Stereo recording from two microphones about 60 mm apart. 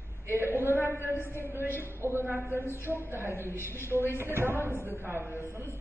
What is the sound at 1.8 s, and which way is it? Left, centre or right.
Speech, right.